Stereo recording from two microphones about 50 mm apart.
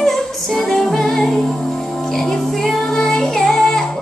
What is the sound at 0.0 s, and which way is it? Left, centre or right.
Music, centre.